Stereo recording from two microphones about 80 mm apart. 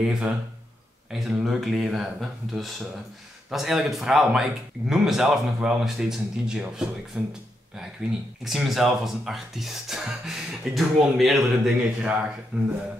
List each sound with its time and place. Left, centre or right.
0.0 s speech: centre
1.4 s speech: centre
8.5 s speech: centre